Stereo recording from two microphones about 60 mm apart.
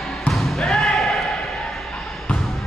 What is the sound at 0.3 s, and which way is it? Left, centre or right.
Basketball bounce, centre.